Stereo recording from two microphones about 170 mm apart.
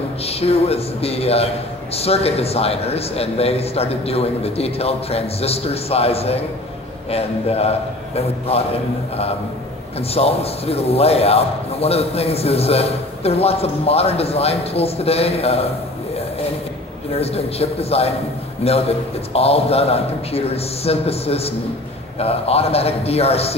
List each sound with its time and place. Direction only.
0.2 s a man's voice: 35° left (ahead or behind)
9.9 s a man's voice: 35° left (ahead or behind)
17.2 s a man's voice: 35° left (ahead or behind)